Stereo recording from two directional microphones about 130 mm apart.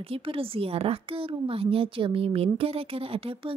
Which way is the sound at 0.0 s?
45° right (ahead or behind).